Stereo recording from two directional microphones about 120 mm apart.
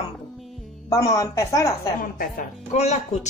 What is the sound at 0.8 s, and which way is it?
Speech, 25° left (ahead or behind).